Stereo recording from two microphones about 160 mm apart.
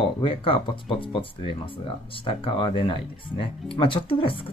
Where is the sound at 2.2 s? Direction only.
35° left (ahead or behind).